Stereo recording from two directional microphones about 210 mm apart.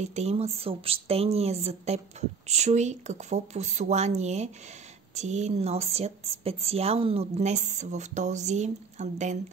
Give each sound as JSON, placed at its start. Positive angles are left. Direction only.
{"t": 0.0, "sound": "a woman's voice", "side_deg": -30}